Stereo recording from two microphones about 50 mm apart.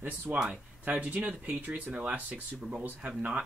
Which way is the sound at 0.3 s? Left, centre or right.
Centre.